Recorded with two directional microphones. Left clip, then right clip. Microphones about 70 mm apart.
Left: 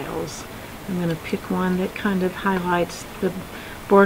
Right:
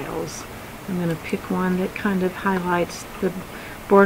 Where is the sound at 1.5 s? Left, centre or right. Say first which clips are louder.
Even; centre.